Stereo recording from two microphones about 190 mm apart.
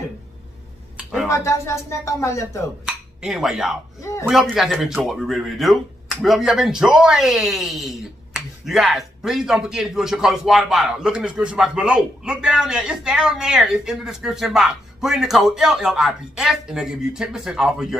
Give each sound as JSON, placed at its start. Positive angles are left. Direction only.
{"t": 0.9, "sound": "a sound", "side_deg": -5}
{"t": 1.3, "sound": "speech", "side_deg": 15}
{"t": 2.8, "sound": "speech", "side_deg": -5}